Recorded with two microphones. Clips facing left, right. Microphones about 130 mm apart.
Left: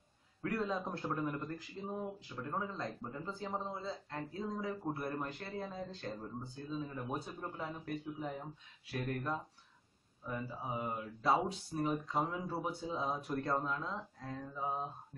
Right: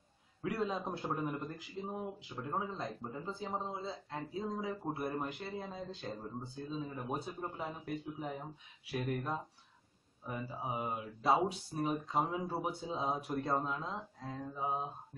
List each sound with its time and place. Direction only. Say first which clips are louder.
0.4 s speech: even; 15° right (ahead or behind)